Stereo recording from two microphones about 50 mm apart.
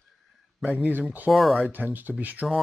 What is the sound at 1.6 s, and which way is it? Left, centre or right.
Speech, right.